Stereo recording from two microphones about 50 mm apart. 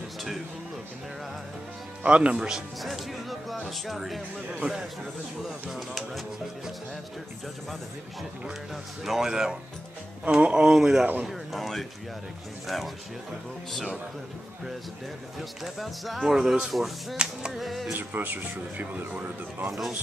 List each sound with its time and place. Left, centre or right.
2.0 s speech: right
2.8 s music: centre
4.5 s speech: centre
9.0 s speech: centre
11.2 s speech: centre
15.3 s speech: centre
17.9 s speech: right